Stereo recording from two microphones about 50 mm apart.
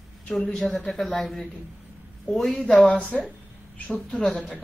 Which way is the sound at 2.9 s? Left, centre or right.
Left.